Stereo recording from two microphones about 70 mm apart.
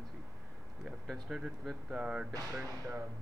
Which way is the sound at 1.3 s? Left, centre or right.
Centre.